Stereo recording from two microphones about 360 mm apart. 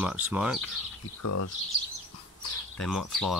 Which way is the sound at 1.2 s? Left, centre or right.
Left.